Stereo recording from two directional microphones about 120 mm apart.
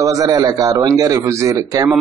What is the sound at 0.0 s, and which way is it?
A man's voice, 30° right (ahead or behind).